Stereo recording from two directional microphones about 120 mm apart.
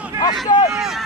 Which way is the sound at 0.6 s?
5° right (ahead or behind).